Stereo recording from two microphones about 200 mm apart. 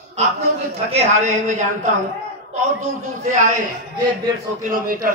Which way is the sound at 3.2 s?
40° right (ahead or behind).